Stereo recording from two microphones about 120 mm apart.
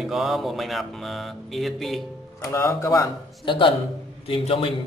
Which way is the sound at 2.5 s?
25° left (ahead or behind).